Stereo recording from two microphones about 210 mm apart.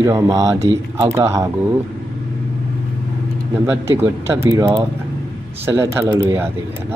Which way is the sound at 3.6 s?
10° right (ahead or behind).